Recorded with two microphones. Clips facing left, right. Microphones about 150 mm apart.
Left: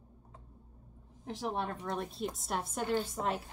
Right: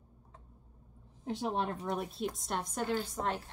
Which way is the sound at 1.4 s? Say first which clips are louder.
Right 1 dB; 20° right (ahead or behind).